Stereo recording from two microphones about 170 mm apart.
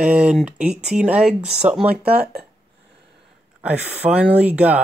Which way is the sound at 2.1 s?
65° right (ahead or behind).